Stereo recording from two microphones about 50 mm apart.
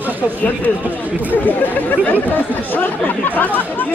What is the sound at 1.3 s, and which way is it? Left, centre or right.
Speech, left.